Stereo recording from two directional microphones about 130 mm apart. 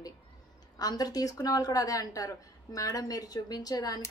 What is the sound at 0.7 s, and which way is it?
Speech, 30° left (ahead or behind).